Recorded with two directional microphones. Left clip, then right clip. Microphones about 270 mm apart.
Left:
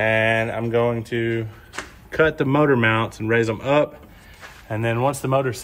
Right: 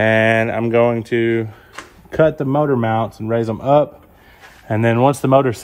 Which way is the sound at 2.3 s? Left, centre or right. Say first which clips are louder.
Right 1 dB; centre.